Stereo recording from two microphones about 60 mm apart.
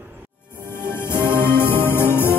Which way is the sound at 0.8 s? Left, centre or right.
Left.